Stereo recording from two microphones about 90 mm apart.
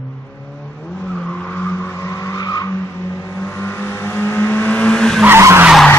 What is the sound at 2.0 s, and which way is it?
Vehicle, 35° left (ahead or behind).